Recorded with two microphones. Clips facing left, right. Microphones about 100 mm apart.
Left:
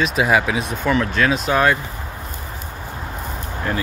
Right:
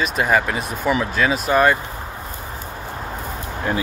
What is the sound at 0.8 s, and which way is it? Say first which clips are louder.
Speech: left 1 dB; 10° right (ahead or behind).